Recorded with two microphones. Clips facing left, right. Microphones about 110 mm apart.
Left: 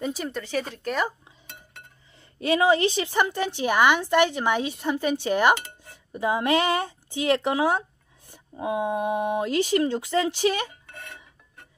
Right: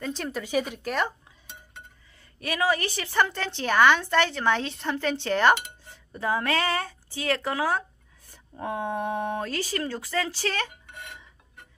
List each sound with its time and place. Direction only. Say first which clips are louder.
0.0 s a woman's voice: left 3 dB; 5° left (ahead or behind)
0.3 s speech: right 2 dB; 10° right (ahead or behind)
0.8 s speech: left 1 dB; centre (ahead or behind)
2.4 s a woman's voice: left 6 dB; 25° left (ahead or behind)